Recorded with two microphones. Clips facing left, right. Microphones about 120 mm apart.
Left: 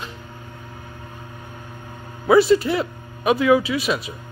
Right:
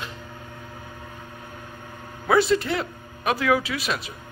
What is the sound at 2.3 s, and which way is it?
A man's voice, 5° left (ahead or behind).